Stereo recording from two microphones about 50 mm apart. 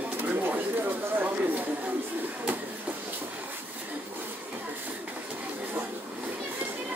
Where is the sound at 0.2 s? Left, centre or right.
Right.